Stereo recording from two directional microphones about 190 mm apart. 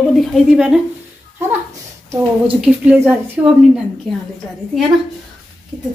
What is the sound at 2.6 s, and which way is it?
Speech, 5° right (ahead or behind).